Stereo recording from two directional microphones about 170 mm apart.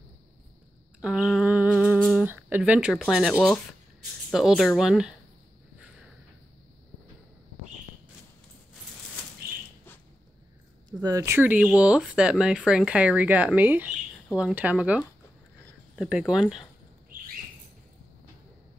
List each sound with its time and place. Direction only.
1.0 s humming: centre (ahead or behind)
2.2 s speech: 10° right (ahead or behind)
10.9 s speech: 20° right (ahead or behind); by 16.6 s 5° right (ahead or behind)